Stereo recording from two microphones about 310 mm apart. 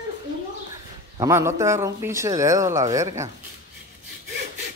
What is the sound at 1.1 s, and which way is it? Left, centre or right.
Speech, centre.